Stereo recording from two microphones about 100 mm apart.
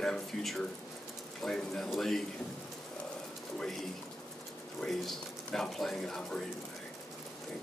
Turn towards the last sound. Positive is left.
turn(degrees=5)  # may be behind; listen again after turning